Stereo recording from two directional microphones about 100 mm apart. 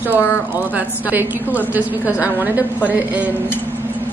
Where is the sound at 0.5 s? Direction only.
15° right (ahead or behind).